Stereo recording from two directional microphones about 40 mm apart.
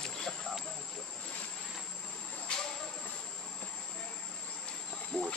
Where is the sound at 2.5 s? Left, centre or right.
Left.